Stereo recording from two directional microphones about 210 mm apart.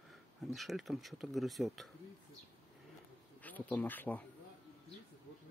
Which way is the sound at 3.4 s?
10° left (ahead or behind).